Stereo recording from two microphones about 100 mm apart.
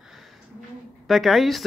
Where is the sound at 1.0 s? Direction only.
Centre (ahead or behind).